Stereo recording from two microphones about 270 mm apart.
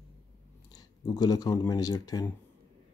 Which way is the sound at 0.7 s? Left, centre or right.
Centre.